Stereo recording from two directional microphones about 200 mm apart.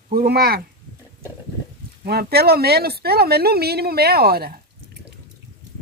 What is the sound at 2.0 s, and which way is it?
Speech, 50° right (ahead or behind).